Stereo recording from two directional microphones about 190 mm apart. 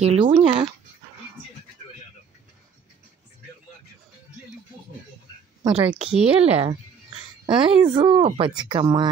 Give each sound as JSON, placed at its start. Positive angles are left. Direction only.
{"t": 0.0, "sound": "speech", "side_deg": -35}
{"t": 5.7, "sound": "speech", "side_deg": -5}
{"t": 6.5, "sound": "speech", "side_deg": -30}